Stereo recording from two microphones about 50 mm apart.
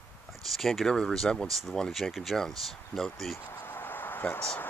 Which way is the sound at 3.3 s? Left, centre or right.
Left.